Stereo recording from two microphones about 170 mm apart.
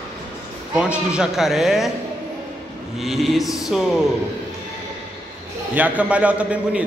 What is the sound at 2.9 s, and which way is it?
Speech, centre (ahead or behind).